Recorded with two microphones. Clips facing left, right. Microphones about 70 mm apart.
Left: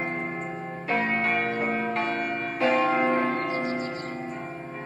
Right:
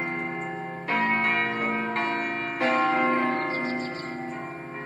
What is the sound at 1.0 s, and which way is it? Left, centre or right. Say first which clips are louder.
Church bell: right 3 dB; right.